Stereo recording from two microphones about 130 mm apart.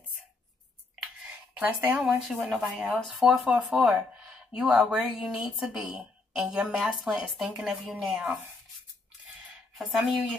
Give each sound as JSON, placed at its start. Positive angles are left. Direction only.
{"t": 1.6, "sound": "speech", "side_deg": -20}
{"t": 2.0, "sound": "speech", "side_deg": -5}
{"t": 9.8, "sound": "speech", "side_deg": 0}